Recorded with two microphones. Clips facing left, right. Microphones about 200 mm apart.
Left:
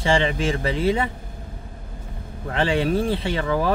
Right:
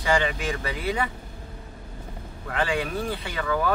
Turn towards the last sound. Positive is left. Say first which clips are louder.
# left 4 dB
turn(degrees=30)  # may be behind; listen again after turning